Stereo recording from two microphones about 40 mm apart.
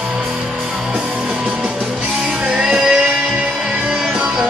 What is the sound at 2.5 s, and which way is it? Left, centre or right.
Music, right.